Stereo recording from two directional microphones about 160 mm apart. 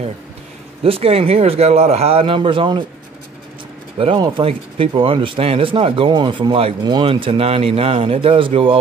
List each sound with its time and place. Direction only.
0.8 s speech: 35° right (ahead or behind)
4.0 s speech: 35° right (ahead or behind)